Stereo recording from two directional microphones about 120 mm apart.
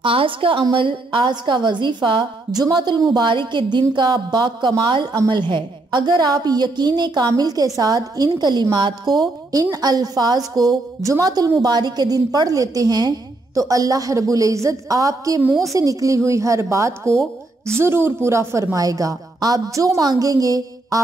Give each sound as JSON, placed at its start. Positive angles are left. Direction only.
{"t": 0.0, "sound": "a woman's voice", "side_deg": -50}